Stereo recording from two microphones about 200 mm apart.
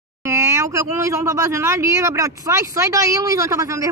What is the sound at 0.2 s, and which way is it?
Speech, 15° right (ahead or behind).